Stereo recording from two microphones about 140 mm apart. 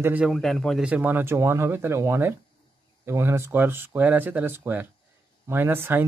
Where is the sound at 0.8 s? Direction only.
10° right (ahead or behind).